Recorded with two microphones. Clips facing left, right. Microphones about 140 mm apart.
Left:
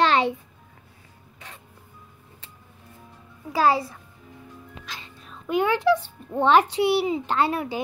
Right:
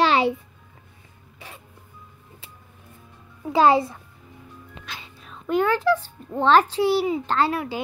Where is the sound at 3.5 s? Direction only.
20° right (ahead or behind).